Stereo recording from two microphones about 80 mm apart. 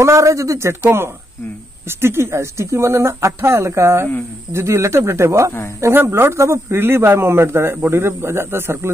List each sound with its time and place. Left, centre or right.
0.0 s a man's voice: right